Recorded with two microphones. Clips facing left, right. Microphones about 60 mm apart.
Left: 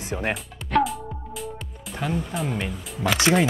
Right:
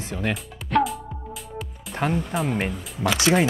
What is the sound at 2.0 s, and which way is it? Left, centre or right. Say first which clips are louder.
Speech: right 3 dB; right.